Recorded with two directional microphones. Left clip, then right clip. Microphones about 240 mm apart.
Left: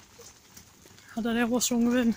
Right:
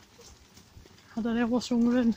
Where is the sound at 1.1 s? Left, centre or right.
Centre.